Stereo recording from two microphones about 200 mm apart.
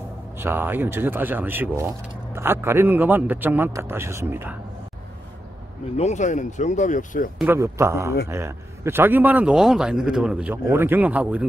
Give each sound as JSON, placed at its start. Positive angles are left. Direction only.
{"t": 0.4, "sound": "a man's voice", "side_deg": -10}
{"t": 5.9, "sound": "speech", "side_deg": 35}
{"t": 7.3, "sound": "a man's voice", "side_deg": -10}